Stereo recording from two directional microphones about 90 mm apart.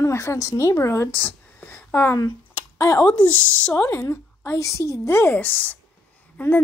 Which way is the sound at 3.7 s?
25° left (ahead or behind).